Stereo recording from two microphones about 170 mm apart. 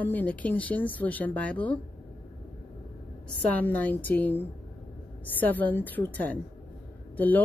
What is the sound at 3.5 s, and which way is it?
Speech, 10° left (ahead or behind).